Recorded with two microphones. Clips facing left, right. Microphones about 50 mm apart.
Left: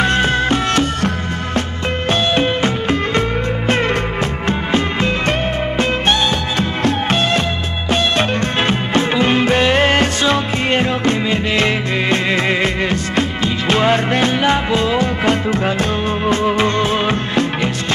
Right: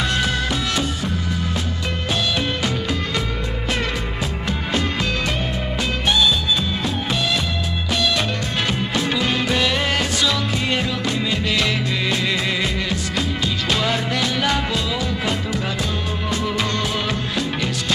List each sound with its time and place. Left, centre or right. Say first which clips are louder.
0.0 s music: left 6 dB; left
0.7 s music: left 6 dB; left
2.0 s music: left 7 dB; left
5.8 s music: left 3 dB; left